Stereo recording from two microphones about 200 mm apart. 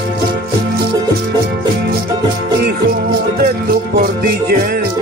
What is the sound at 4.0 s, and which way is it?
Music, 45° right (ahead or behind).